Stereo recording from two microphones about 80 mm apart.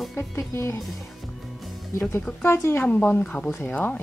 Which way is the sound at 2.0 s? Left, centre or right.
Left.